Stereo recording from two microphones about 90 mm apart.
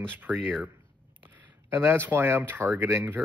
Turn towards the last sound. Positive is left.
turn(degrees=-25)  # may be behind; listen again after turning